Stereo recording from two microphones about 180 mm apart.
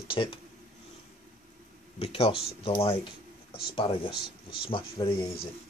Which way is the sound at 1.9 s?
35° left (ahead or behind).